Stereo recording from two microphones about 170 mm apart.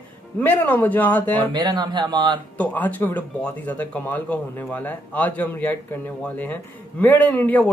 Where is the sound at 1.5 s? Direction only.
25° right (ahead or behind).